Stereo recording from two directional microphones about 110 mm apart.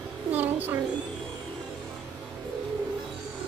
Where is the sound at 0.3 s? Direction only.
15° right (ahead or behind).